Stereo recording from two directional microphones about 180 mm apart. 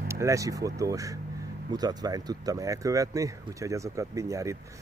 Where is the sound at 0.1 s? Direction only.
15° right (ahead or behind).